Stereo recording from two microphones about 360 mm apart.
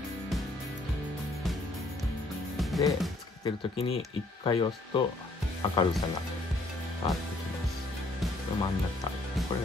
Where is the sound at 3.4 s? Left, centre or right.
Centre.